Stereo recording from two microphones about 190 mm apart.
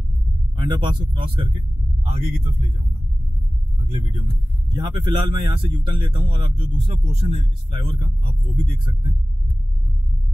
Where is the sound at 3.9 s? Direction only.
30° right (ahead or behind).